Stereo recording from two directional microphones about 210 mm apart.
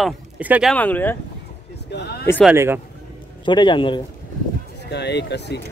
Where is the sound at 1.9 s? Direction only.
50° left (ahead or behind).